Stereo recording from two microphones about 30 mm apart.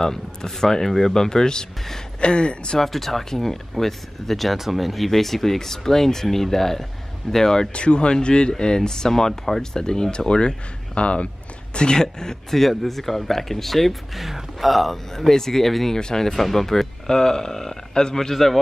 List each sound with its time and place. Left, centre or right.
0.0 s speech: centre
1.1 s speech: left
2.1 s speech: left
2.8 s speech: centre
4.6 s speech: centre
7.7 s speech: left; by 9.7 s centre
9.8 s speech: left
11.7 s speech: left
12.4 s speech: centre
14.1 s speech: centre
15.1 s speech: centre
16.0 s speech: centre
18.3 s speech: centre